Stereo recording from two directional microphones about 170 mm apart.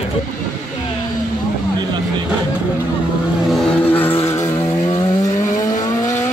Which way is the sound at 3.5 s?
5° left (ahead or behind).